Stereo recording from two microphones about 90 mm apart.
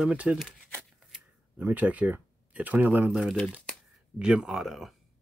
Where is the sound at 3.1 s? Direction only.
Centre (ahead or behind).